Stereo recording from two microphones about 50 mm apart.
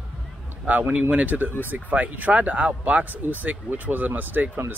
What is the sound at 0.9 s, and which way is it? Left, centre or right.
Speech, right.